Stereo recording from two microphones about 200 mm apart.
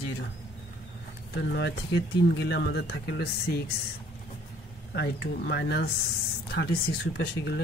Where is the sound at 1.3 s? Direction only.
60° left (ahead or behind).